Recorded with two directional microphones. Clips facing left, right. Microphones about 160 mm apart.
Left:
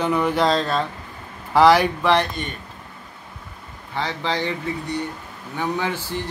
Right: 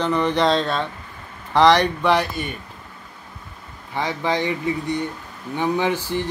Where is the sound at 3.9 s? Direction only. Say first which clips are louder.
Right 2 dB; 15° right (ahead or behind).